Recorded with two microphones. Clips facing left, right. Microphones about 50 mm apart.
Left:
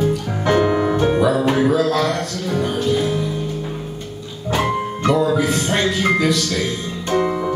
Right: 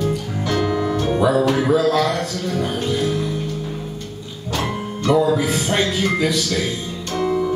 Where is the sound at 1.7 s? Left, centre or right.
Centre.